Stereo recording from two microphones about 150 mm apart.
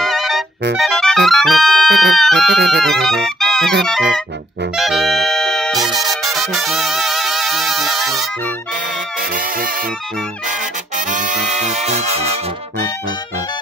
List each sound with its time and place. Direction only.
0.0 s music: centre (ahead or behind)
11.1 s music: 55° right (ahead or behind)